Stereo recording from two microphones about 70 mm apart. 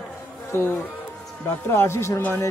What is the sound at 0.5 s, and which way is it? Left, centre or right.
Speech, left.